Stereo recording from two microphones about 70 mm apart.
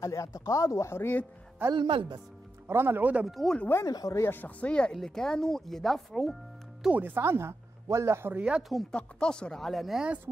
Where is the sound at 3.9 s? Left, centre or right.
Left.